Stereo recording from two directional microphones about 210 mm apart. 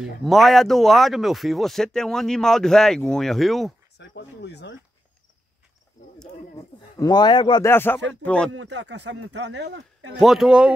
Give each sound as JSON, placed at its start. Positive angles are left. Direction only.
{"t": 0.0, "sound": "speech", "side_deg": 0}
{"t": 4.0, "sound": "speech", "side_deg": 55}
{"t": 7.0, "sound": "speech", "side_deg": 20}
{"t": 7.7, "sound": "speech", "side_deg": 10}
{"t": 8.5, "sound": "speech", "side_deg": -55}
{"t": 10.1, "sound": "speech", "side_deg": 0}